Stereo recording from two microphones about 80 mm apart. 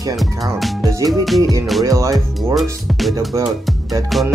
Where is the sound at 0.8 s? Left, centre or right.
Right.